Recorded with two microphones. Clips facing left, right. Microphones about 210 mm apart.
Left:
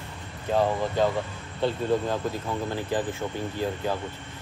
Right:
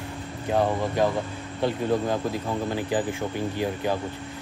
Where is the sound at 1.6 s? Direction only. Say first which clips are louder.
Right 1 dB; 15° right (ahead or behind).